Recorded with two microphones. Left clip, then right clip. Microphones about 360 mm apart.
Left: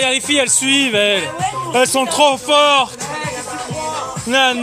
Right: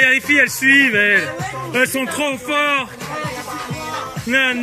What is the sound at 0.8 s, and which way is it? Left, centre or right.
Speech, left.